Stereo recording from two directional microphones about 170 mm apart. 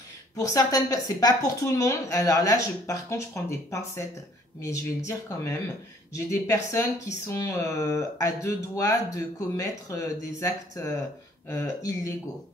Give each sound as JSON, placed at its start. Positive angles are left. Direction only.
{"t": 0.4, "sound": "a woman's voice", "side_deg": 20}